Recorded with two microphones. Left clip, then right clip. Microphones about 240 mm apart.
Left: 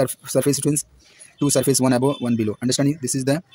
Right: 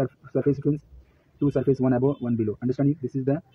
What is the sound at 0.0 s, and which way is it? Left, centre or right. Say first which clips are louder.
Speech: left 5 dB; left.